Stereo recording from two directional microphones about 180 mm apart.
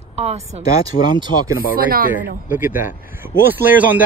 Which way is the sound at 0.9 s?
45° left (ahead or behind).